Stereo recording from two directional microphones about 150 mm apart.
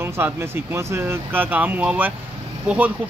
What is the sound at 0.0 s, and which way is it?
Speech, 15° right (ahead or behind).